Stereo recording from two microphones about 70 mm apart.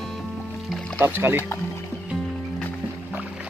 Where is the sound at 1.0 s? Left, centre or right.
Right.